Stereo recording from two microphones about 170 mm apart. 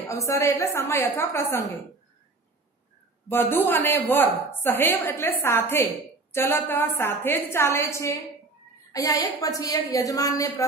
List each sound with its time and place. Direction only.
0.1 s a woman's voice: 15° left (ahead or behind)
3.3 s a woman's voice: 15° left (ahead or behind)